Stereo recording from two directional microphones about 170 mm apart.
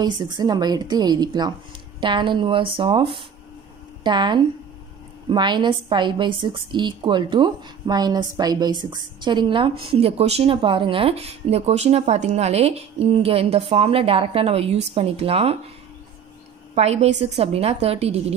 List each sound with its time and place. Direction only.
0.4 s a woman's voice: 25° right (ahead or behind)
16.7 s a woman's voice: 40° right (ahead or behind)